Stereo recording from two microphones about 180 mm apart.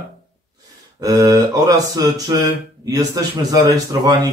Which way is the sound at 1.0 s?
20° right (ahead or behind).